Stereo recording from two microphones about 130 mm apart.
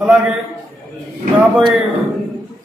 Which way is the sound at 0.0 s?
5° right (ahead or behind).